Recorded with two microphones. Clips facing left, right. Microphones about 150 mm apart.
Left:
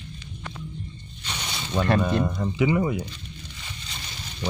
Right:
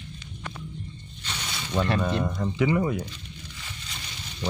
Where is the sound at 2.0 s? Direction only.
5° left (ahead or behind).